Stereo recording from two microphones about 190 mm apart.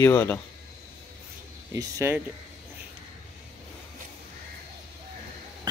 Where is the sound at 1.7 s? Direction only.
15° right (ahead or behind).